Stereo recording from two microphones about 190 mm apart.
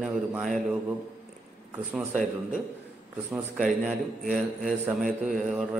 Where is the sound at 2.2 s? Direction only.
5° right (ahead or behind).